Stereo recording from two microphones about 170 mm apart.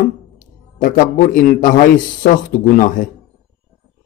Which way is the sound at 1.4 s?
50° left (ahead or behind).